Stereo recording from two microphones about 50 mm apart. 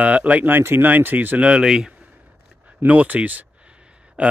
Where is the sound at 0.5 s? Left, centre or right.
Right.